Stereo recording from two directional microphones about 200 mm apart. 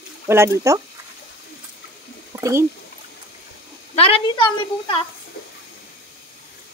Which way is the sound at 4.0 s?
25° left (ahead or behind).